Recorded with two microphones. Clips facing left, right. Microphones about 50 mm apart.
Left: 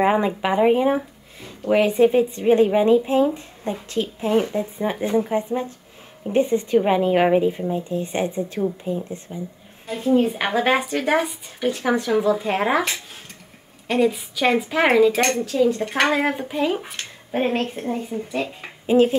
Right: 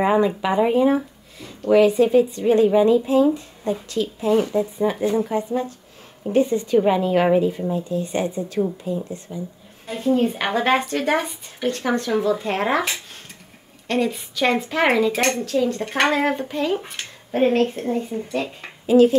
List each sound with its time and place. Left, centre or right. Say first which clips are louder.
0.0 s speech: right 1 dB; left
9.8 s speech: left 1 dB; centre
18.9 s speech: right 2 dB; left